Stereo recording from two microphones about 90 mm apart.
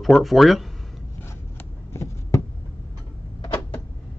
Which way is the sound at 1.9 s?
30° left (ahead or behind).